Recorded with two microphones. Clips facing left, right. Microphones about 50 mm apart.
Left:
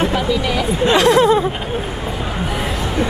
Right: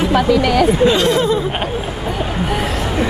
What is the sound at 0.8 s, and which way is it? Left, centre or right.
Speech, left.